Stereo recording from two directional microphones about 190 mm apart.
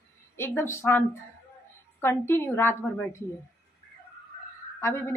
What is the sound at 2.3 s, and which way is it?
Speech, 10° left (ahead or behind).